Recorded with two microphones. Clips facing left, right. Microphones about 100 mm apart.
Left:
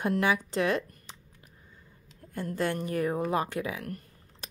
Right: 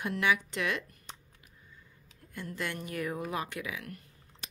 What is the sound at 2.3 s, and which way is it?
A woman's voice, 40° left (ahead or behind).